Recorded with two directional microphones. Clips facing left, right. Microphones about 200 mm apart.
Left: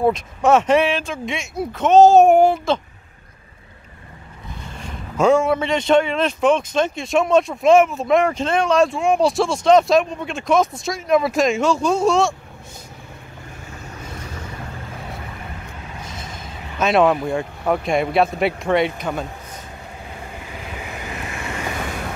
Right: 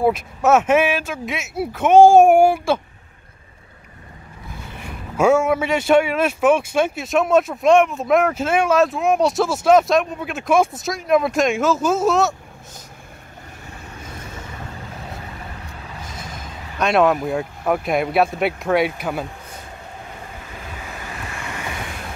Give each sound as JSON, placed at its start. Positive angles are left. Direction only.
{"t": 0.0, "sound": "speech", "side_deg": -5}
{"t": 4.7, "sound": "speech", "side_deg": -10}
{"t": 16.7, "sound": "speech", "side_deg": 0}